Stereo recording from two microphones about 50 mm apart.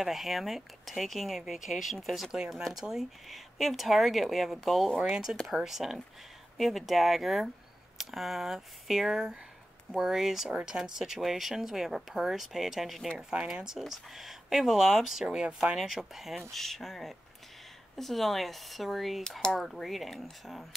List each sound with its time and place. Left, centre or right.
0.0 s speech: centre
5.0 s speech: centre
13.3 s speech: centre
15.2 s speech: centre
15.8 s speech: centre
16.4 s speech: centre